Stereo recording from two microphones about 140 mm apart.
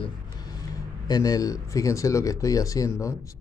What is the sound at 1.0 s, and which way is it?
Speech, 25° left (ahead or behind).